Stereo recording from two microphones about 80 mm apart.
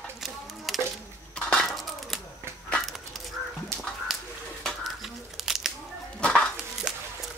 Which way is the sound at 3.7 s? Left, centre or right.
Right.